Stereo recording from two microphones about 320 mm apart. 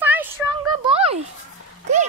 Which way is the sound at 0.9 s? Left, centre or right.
Centre.